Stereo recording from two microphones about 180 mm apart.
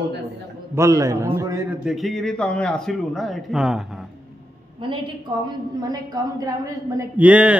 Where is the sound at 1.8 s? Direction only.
Centre (ahead or behind).